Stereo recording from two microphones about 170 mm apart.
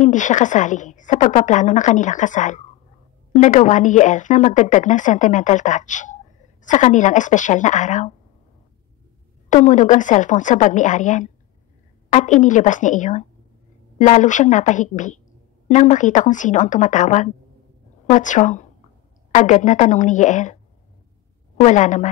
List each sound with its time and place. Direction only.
0.0 s speech: 45° left (ahead or behind)
9.5 s speech: 45° left (ahead or behind)
21.5 s speech: 45° left (ahead or behind)